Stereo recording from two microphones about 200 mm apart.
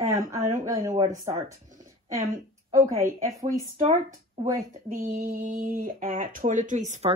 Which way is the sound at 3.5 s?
35° right (ahead or behind).